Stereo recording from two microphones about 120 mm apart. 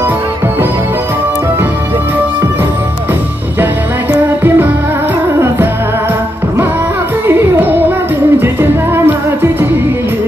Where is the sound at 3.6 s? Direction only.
20° right (ahead or behind).